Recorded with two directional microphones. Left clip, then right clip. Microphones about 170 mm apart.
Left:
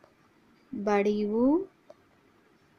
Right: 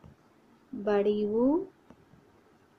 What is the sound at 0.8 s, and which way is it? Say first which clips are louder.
Speech: even; 30° left (ahead or behind).